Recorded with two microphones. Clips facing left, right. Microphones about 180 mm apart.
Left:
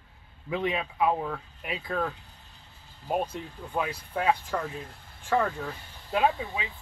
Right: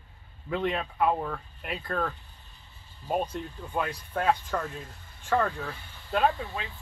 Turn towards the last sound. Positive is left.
turn(degrees=5)  # may be behind; listen again after turning